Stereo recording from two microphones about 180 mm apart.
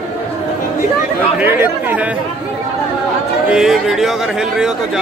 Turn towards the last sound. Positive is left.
turn(degrees=0)  # may be behind; listen again after turning